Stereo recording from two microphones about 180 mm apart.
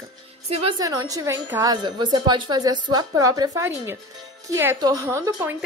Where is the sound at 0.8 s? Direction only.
20° right (ahead or behind).